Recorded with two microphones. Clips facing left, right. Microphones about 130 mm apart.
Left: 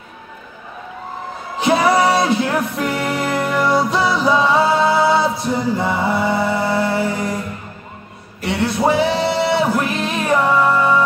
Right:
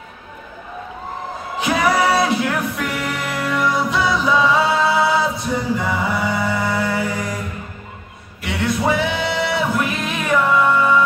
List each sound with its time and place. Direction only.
1.6 s music: 30° left (ahead or behind)
8.4 s singing: 30° left (ahead or behind)